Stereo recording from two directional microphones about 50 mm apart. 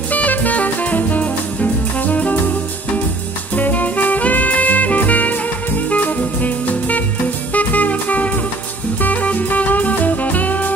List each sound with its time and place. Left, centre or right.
0.1 s music: left
3.5 s music: left